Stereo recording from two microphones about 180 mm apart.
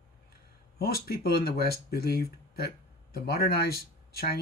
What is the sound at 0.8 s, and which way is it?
Speech, 60° left (ahead or behind).